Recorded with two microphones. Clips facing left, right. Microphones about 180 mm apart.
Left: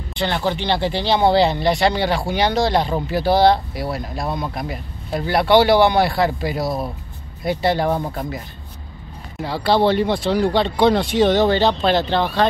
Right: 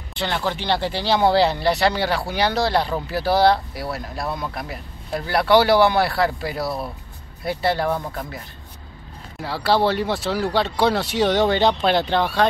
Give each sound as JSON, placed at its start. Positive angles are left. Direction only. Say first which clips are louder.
{"t": 0.7, "sound": "speech", "louder": "left 2 dB", "side_deg": 15}
{"t": 9.4, "sound": "speech", "louder": "left 2 dB", "side_deg": -5}